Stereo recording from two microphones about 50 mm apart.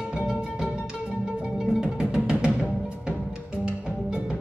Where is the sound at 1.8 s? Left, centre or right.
Centre.